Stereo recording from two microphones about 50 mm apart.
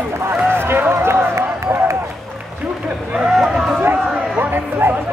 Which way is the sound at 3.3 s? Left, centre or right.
Centre.